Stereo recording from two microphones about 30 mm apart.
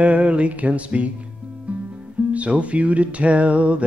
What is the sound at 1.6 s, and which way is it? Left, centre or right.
Guitar, right.